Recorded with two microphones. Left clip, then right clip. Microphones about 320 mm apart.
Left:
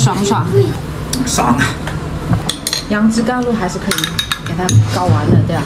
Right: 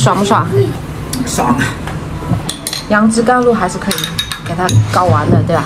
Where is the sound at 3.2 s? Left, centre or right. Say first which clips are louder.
Right 6 dB; right.